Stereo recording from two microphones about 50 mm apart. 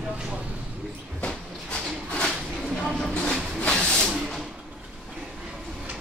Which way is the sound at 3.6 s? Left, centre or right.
Centre.